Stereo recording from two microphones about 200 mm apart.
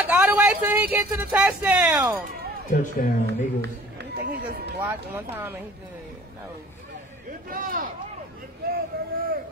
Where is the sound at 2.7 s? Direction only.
45° left (ahead or behind).